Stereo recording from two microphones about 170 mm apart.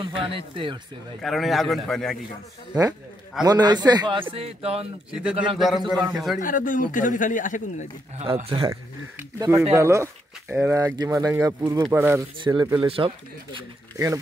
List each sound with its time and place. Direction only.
0.0 s speech: 30° right (ahead or behind)
1.2 s a man's voice: centre (ahead or behind)
3.4 s a man's voice: 25° right (ahead or behind)
5.6 s a man's voice: centre (ahead or behind)
6.4 s a man's voice: 50° left (ahead or behind)
8.2 s speech: 35° right (ahead or behind)
9.4 s a man's voice: 20° right (ahead or behind)
12.8 s speech: 35° right (ahead or behind)
13.9 s speech: 20° right (ahead or behind)